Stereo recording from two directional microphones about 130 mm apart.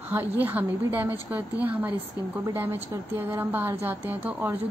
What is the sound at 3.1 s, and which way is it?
A woman's voice, 15° right (ahead or behind).